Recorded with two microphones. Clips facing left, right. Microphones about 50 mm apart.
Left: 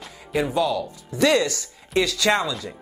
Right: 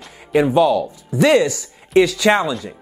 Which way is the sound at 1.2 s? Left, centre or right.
Right.